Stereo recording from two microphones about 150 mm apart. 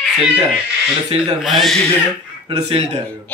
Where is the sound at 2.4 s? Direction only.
40° right (ahead or behind).